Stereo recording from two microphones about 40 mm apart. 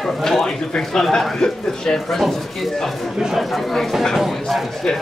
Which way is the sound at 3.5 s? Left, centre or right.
Centre.